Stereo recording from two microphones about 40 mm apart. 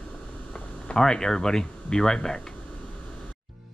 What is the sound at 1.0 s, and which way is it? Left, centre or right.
Speech, centre.